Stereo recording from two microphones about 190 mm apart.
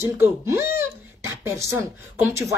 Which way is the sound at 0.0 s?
15° right (ahead or behind).